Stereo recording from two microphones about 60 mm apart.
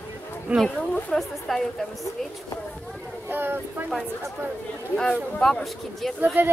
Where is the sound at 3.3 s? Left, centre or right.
Right.